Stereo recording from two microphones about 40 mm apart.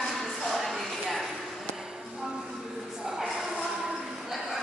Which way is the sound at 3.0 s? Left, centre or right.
Centre.